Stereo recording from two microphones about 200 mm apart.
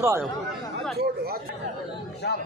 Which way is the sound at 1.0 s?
50° right (ahead or behind).